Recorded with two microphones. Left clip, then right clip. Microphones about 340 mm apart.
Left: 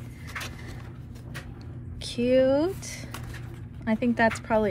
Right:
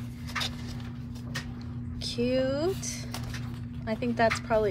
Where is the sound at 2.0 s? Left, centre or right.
Left.